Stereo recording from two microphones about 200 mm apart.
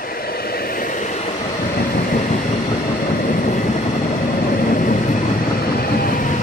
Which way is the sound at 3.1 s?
40° left (ahead or behind).